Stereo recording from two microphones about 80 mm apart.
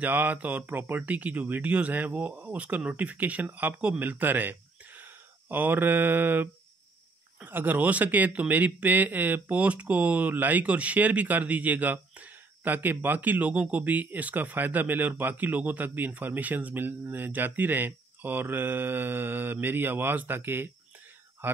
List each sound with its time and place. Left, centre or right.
0.0 s speech: right